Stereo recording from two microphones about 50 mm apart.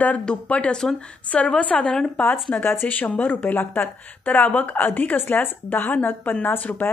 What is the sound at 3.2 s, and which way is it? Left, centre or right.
Speech, left.